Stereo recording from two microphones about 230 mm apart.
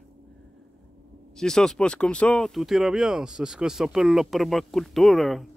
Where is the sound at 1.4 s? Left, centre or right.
Centre.